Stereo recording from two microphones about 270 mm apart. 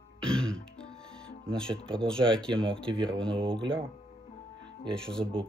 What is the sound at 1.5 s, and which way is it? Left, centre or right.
Speech, centre.